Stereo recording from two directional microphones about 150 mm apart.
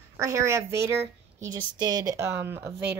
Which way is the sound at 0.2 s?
20° right (ahead or behind).